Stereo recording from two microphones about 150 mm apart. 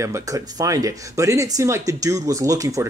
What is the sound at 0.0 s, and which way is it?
Speech, 20° right (ahead or behind).